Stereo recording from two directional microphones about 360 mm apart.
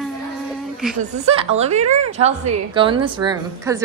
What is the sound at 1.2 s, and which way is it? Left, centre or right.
A woman's voice, centre.